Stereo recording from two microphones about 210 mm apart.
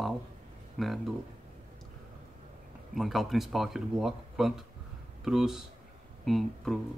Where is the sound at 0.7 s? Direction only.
Centre (ahead or behind).